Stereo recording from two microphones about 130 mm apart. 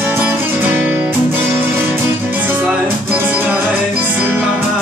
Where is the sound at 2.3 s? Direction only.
15° right (ahead or behind).